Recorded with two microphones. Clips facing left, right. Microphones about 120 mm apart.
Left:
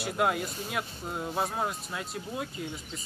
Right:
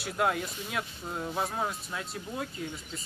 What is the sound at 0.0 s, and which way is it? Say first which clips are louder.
Speech: left 1 dB; 5° left (ahead or behind).